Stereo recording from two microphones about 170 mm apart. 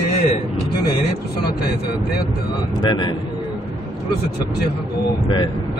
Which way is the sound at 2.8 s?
25° left (ahead or behind).